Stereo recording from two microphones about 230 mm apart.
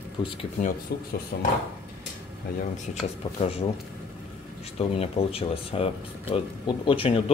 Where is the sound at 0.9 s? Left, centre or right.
Left.